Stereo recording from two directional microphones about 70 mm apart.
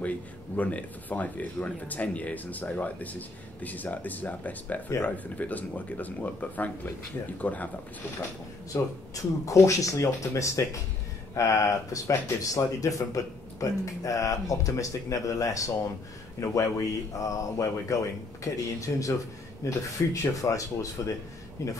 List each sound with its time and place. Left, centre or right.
0.6 s speech: left
8.7 s speech: left
9.1 s speech: left